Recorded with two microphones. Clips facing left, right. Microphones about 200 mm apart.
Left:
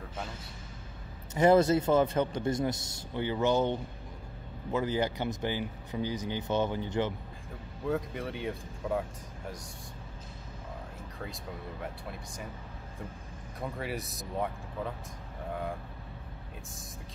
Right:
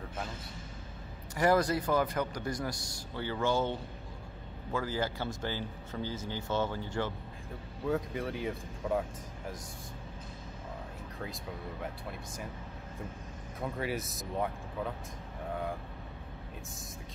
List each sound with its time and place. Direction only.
1.3 s a man's voice: 25° left (ahead or behind)
4.7 s speech: 20° left (ahead or behind)
7.8 s speech: centre (ahead or behind)
11.8 s speech: centre (ahead or behind)
13.6 s speech: centre (ahead or behind)